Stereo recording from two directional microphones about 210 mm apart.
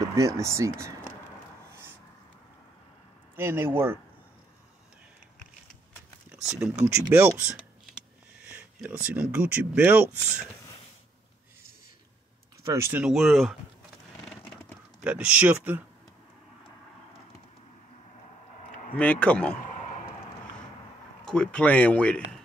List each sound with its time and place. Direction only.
0.0 s speech: 15° right (ahead or behind)
3.3 s speech: 10° right (ahead or behind)
6.3 s speech: 5° right (ahead or behind)
8.5 s speech: 5° right (ahead or behind)
12.6 s speech: 10° right (ahead or behind)
15.0 s speech: 5° right (ahead or behind)
18.9 s speech: 5° left (ahead or behind)
21.3 s speech: 5° left (ahead or behind)